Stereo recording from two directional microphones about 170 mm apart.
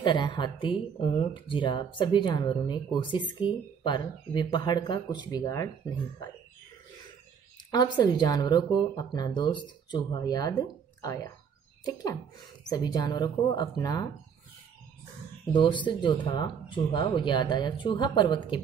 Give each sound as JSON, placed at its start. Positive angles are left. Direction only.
{"t": 0.0, "sound": "speech", "side_deg": 25}
{"t": 7.7, "sound": "speech", "side_deg": 25}
{"t": 15.5, "sound": "speech", "side_deg": 30}